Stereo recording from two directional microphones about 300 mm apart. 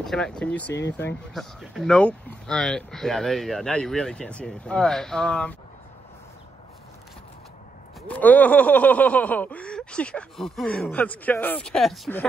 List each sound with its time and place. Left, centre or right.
0.0 s speech: centre
0.7 s speech: left
1.3 s speech: centre
8.1 s speech: centre